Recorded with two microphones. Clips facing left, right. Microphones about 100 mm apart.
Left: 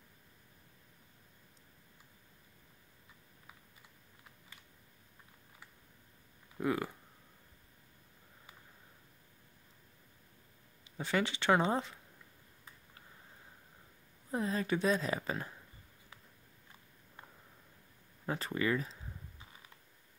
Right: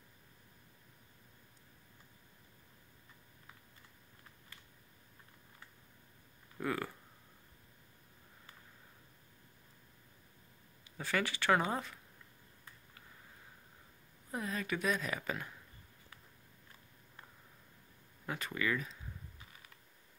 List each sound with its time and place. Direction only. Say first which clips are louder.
6.6 s speech: left 3 dB; 20° left (ahead or behind)
10.8 s speech: left 2 dB; 20° left (ahead or behind)
14.3 s speech: left 5 dB; 30° left (ahead or behind)
18.2 s speech: left 3 dB; 30° left (ahead or behind)